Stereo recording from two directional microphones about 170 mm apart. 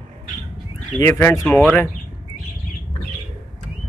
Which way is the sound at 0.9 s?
15° left (ahead or behind).